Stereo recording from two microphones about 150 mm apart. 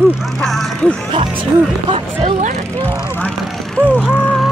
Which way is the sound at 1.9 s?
45° right (ahead or behind).